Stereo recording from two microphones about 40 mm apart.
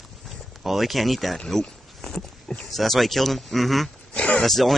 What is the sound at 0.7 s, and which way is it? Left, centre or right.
Speech, centre.